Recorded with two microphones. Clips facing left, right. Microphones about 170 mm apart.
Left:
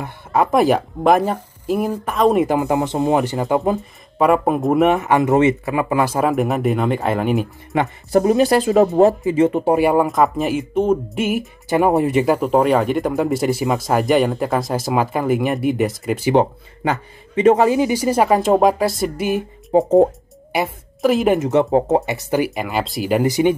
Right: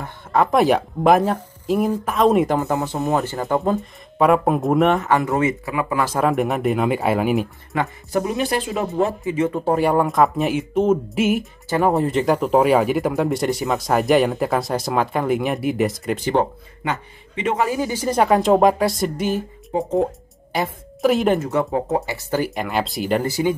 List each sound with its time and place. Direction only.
0.0 s speech: 5° left (ahead or behind)
2.7 s speech: 20° left (ahead or behind)
3.5 s speech: centre (ahead or behind)
5.1 s speech: 20° left (ahead or behind)
6.0 s speech: centre (ahead or behind)
8.1 s speech: 35° left (ahead or behind)
9.5 s speech: 15° left (ahead or behind); by 11.4 s centre (ahead or behind)
11.7 s speech: 15° left (ahead or behind)
12.4 s speech: 10° right (ahead or behind)
17.4 s speech: 40° left (ahead or behind)
17.6 s speech: 20° left (ahead or behind)
21.0 s speech: centre (ahead or behind)
21.4 s speech: 20° left (ahead or behind)
22.5 s speech: centre (ahead or behind)